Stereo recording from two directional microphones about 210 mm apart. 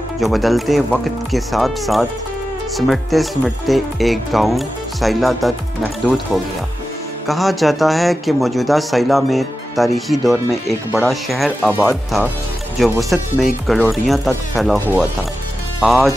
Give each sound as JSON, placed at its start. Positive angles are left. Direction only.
{"t": 0.2, "sound": "speech", "side_deg": 0}
{"t": 7.2, "sound": "speech", "side_deg": 0}